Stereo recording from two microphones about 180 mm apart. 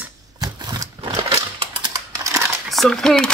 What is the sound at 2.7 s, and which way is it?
Speech, centre (ahead or behind).